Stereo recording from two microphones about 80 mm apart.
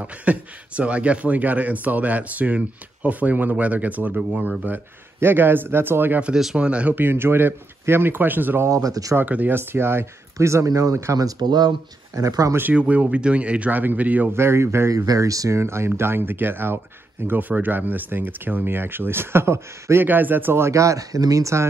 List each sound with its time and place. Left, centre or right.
0.0 s speech: centre
6.2 s speech: centre
8.6 s speech: right
9.1 s speech: right
11.3 s speech: right
12.2 s speech: right
12.7 s speech: centre
14.3 s speech: right